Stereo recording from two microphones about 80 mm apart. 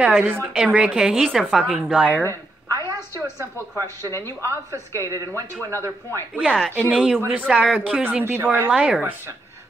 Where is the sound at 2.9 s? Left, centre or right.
Right.